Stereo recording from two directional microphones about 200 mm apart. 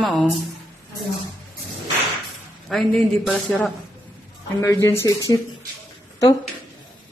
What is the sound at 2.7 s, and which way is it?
Speech, centre (ahead or behind).